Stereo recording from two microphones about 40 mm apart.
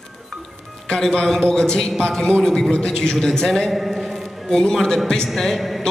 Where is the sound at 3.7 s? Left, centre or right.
Centre.